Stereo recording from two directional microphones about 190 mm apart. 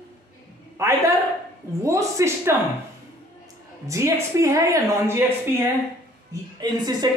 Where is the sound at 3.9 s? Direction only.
15° right (ahead or behind).